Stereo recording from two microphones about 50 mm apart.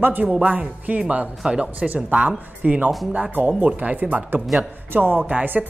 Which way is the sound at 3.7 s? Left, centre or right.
Right.